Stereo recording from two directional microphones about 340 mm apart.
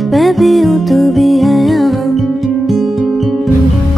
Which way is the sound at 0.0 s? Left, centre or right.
Centre.